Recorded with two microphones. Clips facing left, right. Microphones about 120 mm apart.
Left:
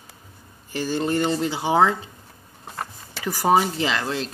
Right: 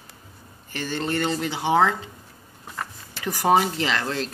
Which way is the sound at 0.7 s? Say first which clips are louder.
Left 4 dB; 10° left (ahead or behind).